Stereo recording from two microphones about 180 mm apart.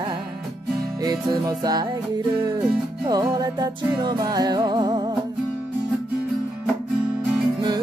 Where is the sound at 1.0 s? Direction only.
20° right (ahead or behind).